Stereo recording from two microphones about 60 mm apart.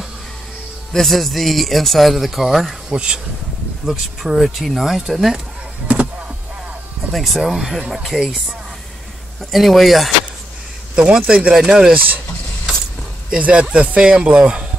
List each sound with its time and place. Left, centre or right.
0.9 s speech: centre
2.9 s speech: centre
5.9 s vehicle: right
7.1 s speech: centre
11.0 s speech: centre
13.3 s speech: centre